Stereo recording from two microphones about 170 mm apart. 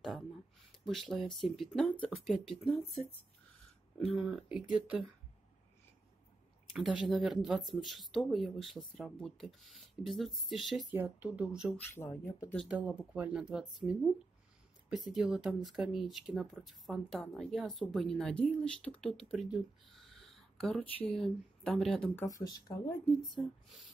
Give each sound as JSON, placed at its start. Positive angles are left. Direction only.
{"t": 0.8, "sound": "speech", "side_deg": 0}
{"t": 4.2, "sound": "speech", "side_deg": -5}
{"t": 6.7, "sound": "speech", "side_deg": 0}
{"t": 11.7, "sound": "speech", "side_deg": 10}
{"t": 12.7, "sound": "speech", "side_deg": -10}
{"t": 19.3, "sound": "a sound", "side_deg": 0}
{"t": 21.1, "sound": "speech", "side_deg": 5}
{"t": 22.1, "sound": "speech", "side_deg": 20}
{"t": 23.2, "sound": "speech", "side_deg": 0}